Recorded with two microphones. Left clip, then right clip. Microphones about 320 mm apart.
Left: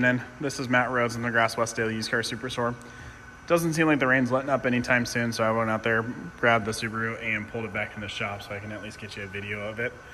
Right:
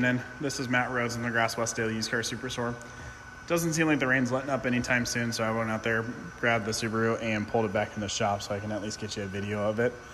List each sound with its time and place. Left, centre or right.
0.0 s a man's voice: centre
9.6 s a man's voice: right